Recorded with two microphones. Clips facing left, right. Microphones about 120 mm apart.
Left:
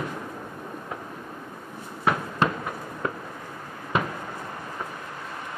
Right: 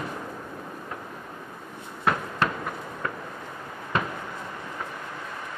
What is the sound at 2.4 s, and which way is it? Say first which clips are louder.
Fireworks: left 3 dB; 15° left (ahead or behind).